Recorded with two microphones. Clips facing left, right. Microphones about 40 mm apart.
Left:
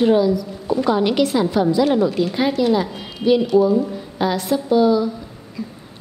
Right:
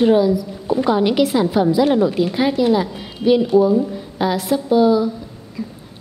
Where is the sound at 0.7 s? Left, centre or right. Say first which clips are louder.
Right 1 dB; right.